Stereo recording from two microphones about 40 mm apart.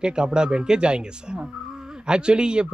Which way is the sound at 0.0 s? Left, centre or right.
Right.